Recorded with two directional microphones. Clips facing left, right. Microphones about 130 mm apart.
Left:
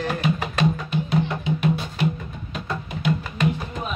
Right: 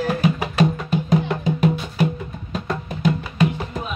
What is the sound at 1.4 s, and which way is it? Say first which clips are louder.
Music: right 3 dB; 40° right (ahead or behind).